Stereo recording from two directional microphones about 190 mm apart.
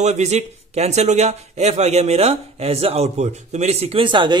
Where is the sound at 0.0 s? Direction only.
35° right (ahead or behind).